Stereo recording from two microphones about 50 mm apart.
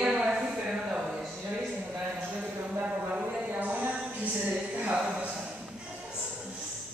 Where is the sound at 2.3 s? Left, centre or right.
Right.